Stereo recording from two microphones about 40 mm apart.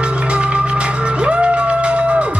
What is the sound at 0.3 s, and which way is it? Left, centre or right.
Music, right.